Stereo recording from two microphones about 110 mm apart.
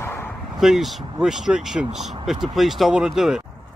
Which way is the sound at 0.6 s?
Centre (ahead or behind).